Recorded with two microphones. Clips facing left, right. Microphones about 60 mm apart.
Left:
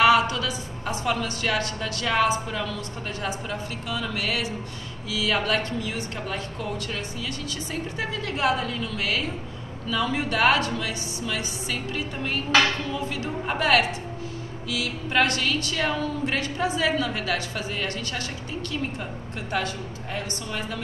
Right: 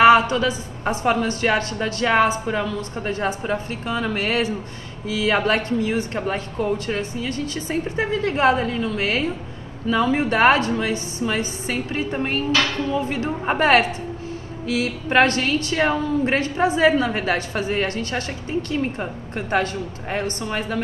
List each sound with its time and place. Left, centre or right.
0.0 s a woman's voice: right